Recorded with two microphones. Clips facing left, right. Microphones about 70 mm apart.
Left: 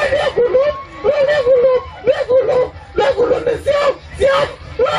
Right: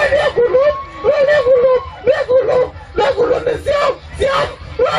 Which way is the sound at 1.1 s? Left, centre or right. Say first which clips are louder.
Right 2 dB; centre.